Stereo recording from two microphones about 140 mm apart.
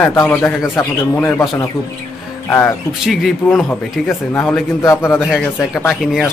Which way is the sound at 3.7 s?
15° left (ahead or behind).